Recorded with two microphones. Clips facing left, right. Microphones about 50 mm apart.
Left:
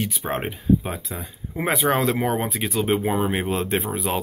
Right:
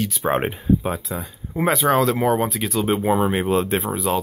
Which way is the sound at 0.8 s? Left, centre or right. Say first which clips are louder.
Right 5 dB; centre.